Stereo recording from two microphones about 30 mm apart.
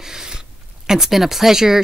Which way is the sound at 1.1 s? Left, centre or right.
Centre.